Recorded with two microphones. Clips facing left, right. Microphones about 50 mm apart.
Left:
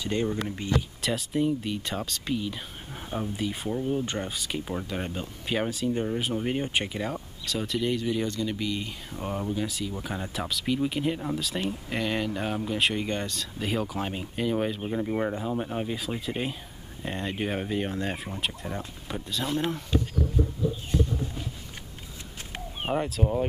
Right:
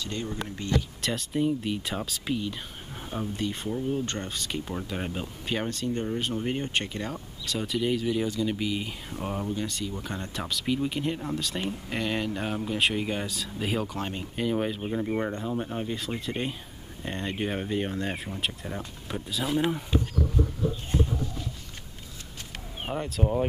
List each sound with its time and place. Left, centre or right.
0.0 s speech: centre
1.0 s speech: centre
5.6 s speech: centre
23.0 s speech: centre